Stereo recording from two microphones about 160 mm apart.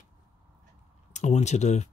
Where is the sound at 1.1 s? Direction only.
45° left (ahead or behind).